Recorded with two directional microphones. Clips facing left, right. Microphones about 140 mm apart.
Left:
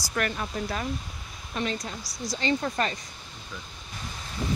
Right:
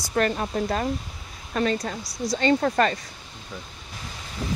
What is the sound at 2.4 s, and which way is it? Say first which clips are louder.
Speech: right 6 dB; 50° right (ahead or behind).